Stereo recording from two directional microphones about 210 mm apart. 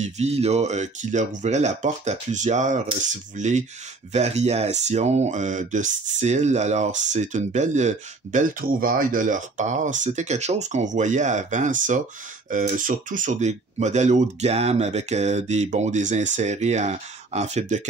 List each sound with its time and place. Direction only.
0.0 s speech: 30° right (ahead or behind)